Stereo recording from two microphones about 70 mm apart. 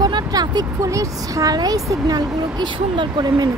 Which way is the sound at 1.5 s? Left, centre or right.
Right.